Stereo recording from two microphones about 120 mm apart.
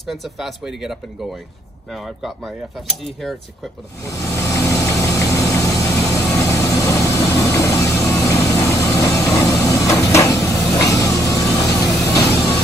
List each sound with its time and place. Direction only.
0.0 s speech: centre (ahead or behind)
4.0 s vehicle: 25° left (ahead or behind)